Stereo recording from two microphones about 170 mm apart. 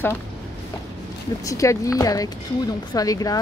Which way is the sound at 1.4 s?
20° left (ahead or behind).